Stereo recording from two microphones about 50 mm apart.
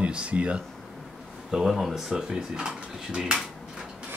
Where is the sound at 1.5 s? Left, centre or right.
Centre.